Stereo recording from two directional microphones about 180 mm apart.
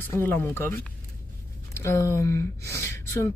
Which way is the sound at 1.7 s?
15° left (ahead or behind).